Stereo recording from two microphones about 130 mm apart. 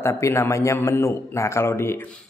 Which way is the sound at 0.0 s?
20° left (ahead or behind).